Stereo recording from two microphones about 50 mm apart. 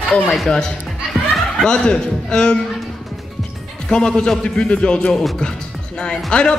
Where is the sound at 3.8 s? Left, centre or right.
Centre.